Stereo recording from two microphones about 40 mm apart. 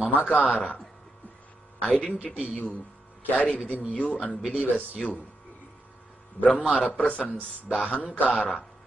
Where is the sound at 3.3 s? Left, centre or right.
Left.